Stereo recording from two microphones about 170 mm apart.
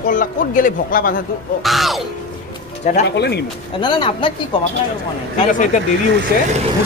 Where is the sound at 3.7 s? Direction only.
30° left (ahead or behind).